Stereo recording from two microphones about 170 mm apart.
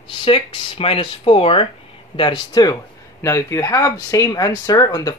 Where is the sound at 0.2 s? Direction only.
30° left (ahead or behind).